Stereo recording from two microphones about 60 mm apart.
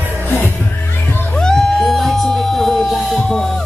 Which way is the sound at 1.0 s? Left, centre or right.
Left.